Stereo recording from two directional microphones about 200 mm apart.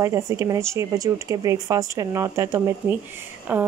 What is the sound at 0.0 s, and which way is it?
Speech, 15° right (ahead or behind).